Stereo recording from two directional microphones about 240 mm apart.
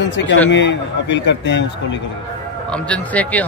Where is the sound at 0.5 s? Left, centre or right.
Left.